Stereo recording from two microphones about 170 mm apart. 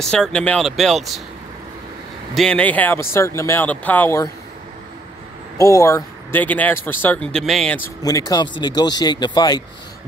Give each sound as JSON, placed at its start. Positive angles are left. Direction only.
{"t": 0.0, "sound": "speech", "side_deg": 5}
{"t": 2.3, "sound": "speech", "side_deg": 5}
{"t": 5.6, "sound": "speech", "side_deg": 20}
{"t": 8.0, "sound": "speech", "side_deg": 20}